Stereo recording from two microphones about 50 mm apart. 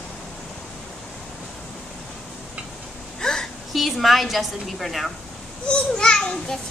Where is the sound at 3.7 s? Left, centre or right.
Centre.